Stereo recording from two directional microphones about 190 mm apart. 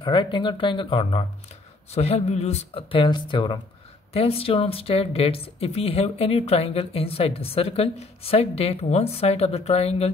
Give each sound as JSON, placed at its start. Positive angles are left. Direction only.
{"t": 0.0, "sound": "speech", "side_deg": 25}